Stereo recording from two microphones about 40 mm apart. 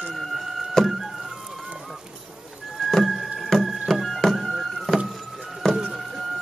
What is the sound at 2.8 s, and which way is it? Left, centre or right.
Music, centre.